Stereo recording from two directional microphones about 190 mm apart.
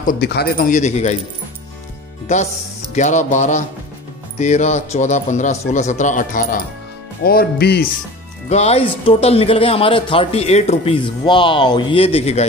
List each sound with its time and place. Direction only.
0.0 s speech: 55° left (ahead or behind); by 1.1 s 35° left (ahead or behind)
2.9 s a man's voice: 40° left (ahead or behind); by 7.8 s 60° left (ahead or behind)
8.5 s speech: 35° left (ahead or behind)